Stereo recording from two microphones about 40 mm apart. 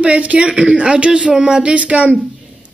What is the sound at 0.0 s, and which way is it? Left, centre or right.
Speech, right.